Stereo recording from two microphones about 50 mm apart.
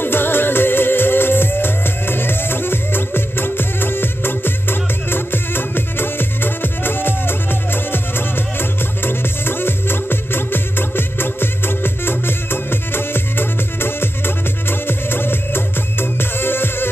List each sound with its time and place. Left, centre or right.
0.0 s music: left